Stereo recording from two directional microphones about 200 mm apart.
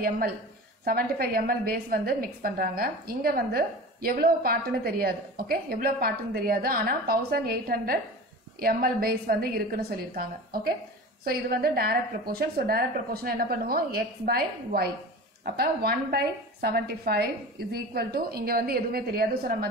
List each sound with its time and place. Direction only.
0.8 s a woman's voice: 50° right (ahead or behind)